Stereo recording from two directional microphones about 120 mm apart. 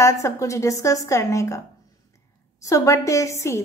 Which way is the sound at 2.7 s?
25° left (ahead or behind).